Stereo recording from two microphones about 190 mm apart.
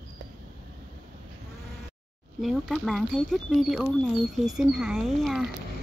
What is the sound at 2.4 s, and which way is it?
Speech, centre (ahead or behind).